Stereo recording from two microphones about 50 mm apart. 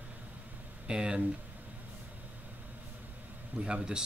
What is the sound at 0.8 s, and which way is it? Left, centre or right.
Speech, centre.